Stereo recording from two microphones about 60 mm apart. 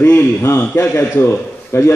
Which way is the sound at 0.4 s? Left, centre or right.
Left.